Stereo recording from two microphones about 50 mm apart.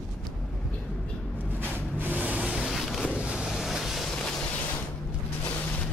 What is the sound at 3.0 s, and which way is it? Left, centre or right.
Vehicle, right.